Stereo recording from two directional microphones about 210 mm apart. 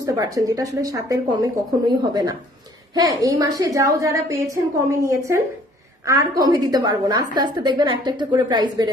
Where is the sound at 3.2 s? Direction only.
15° right (ahead or behind).